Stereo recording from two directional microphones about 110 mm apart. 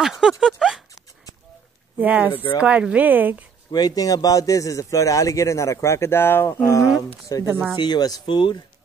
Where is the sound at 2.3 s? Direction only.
50° left (ahead or behind).